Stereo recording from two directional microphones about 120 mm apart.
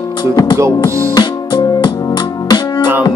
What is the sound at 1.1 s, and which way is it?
Music, 40° left (ahead or behind).